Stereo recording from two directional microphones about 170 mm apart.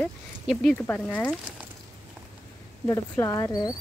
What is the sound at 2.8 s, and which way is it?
Speech, 15° left (ahead or behind).